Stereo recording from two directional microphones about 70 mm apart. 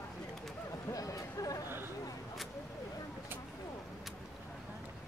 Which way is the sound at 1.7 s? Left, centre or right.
Right.